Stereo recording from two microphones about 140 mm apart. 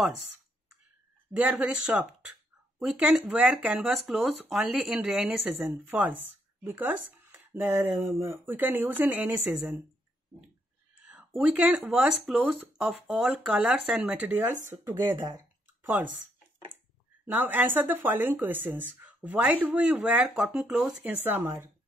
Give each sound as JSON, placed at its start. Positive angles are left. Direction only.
{"t": 1.3, "sound": "speech", "side_deg": -10}
{"t": 11.0, "sound": "speech", "side_deg": -10}
{"t": 15.8, "sound": "speech", "side_deg": -10}
{"t": 17.3, "sound": "speech", "side_deg": -15}